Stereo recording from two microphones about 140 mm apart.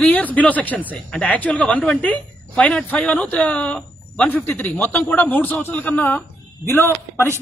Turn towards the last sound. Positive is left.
turn(degrees=15)  # may be behind; listen again after turning